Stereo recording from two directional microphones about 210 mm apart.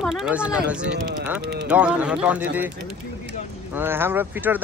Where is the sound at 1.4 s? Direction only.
55° right (ahead or behind).